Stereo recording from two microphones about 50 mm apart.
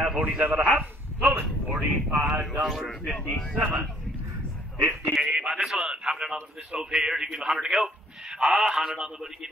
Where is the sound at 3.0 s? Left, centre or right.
Left.